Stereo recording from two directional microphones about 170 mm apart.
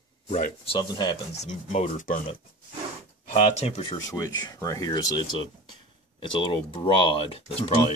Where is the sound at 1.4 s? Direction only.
45° left (ahead or behind).